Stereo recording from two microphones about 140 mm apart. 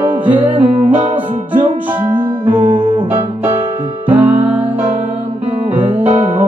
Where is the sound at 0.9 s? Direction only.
50° right (ahead or behind).